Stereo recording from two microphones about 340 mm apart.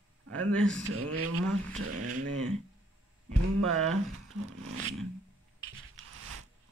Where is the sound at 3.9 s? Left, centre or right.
Right.